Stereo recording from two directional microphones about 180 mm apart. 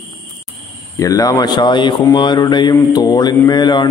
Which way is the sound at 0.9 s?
20° left (ahead or behind).